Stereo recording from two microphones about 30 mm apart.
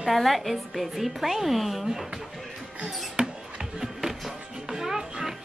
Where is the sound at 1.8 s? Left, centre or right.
Centre.